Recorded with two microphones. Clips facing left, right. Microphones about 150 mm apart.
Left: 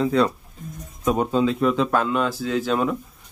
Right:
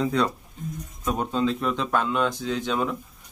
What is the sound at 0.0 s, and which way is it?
Speech, centre (ahead or behind).